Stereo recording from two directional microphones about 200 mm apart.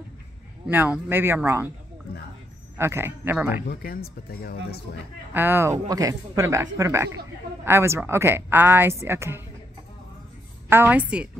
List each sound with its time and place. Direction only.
0.7 s a woman's voice: 10° right (ahead or behind)
2.8 s a woman's voice: 10° right (ahead or behind)
3.6 s speech: 45° left (ahead or behind)
5.3 s a woman's voice: 10° right (ahead or behind)
10.7 s a woman's voice: 10° right (ahead or behind)